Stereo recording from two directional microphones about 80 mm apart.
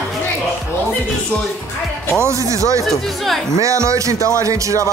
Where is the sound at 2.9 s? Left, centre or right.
Centre.